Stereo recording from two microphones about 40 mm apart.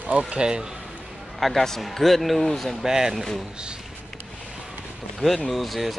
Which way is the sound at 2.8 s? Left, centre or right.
Centre.